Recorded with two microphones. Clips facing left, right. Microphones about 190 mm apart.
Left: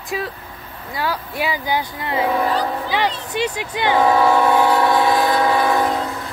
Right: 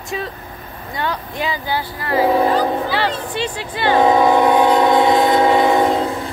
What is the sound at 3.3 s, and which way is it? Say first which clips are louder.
Speech: left 1 dB; 15° left (ahead or behind).